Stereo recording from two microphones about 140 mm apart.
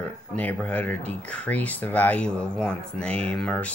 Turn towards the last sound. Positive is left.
turn(degrees=5)  # may be behind; listen again after turning